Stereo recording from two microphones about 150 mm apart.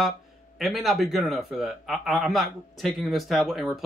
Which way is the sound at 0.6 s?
Centre (ahead or behind).